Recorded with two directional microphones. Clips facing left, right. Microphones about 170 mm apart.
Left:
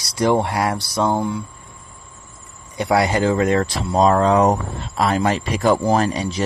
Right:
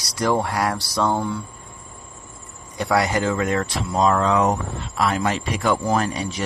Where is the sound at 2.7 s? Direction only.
20° left (ahead or behind).